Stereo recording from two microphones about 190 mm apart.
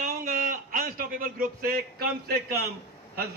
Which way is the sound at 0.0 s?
45° right (ahead or behind).